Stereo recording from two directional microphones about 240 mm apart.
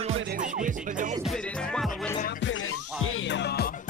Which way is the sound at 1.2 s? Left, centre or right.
Centre.